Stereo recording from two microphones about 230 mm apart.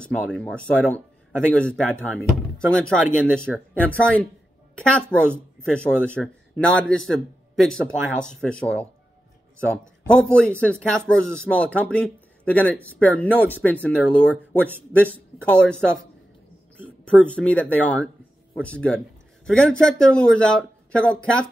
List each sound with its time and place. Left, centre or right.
0.0 s speech: centre
10.2 s speech: centre
17.0 s speech: centre